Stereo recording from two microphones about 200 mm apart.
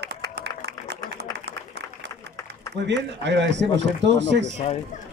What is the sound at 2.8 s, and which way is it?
A man's voice, 60° right (ahead or behind).